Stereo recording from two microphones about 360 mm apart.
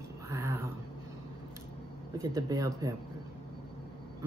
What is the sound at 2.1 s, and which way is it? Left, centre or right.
Speech, centre.